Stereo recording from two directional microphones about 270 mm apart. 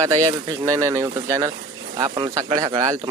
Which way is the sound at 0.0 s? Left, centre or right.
Centre.